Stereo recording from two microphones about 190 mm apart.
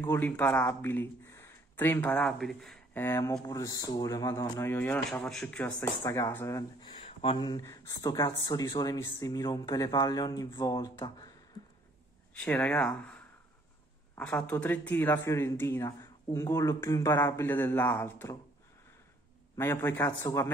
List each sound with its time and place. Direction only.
0.1 s speech: 10° left (ahead or behind)
7.0 s speech: 30° left (ahead or behind)
12.4 s speech: 10° left (ahead or behind)
19.5 s speech: 10° left (ahead or behind)